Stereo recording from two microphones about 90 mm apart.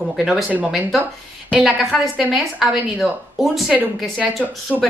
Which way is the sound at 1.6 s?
5° right (ahead or behind).